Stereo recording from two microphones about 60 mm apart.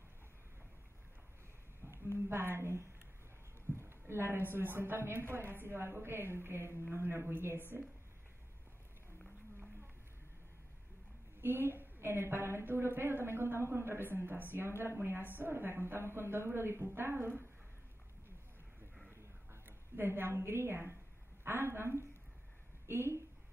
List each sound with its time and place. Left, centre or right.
2.1 s a woman's voice: right
11.4 s a woman's voice: right
19.0 s a sound: right
21.5 s a woman's voice: right